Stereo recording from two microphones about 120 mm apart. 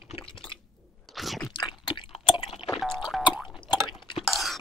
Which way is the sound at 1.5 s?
40° left (ahead or behind).